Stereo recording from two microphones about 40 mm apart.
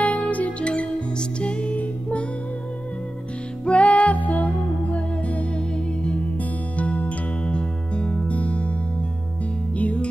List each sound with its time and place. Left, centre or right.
0.0 s music: left
3.6 s music: left
6.8 s music: left
9.8 s music: left